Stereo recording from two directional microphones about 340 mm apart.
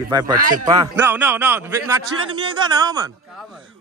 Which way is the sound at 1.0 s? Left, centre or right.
Centre.